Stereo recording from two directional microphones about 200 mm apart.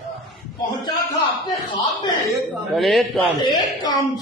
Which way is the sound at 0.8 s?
20° left (ahead or behind).